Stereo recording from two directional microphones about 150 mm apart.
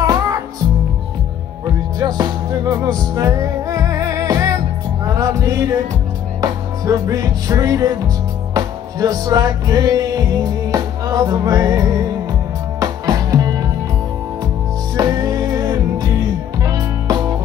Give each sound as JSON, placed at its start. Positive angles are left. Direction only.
{"t": 0.0, "sound": "music", "side_deg": -25}
{"t": 2.0, "sound": "music", "side_deg": -25}
{"t": 15.0, "sound": "music", "side_deg": -25}